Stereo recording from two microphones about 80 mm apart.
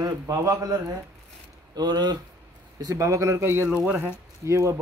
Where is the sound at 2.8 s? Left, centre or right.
Right.